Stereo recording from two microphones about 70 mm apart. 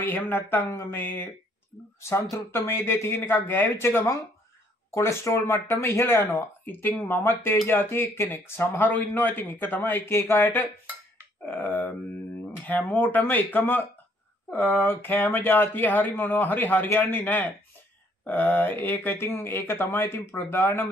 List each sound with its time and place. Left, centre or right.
0.0 s speech: left
2.0 s speech: left